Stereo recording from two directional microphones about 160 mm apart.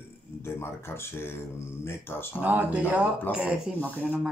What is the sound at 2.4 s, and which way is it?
Speech, 10° right (ahead or behind).